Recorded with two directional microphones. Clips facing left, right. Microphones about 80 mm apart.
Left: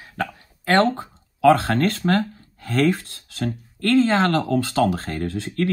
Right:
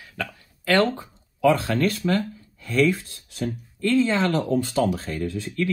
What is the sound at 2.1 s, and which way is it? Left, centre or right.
Speech, left.